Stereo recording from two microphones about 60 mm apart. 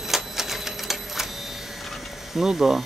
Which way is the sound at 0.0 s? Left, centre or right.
Centre.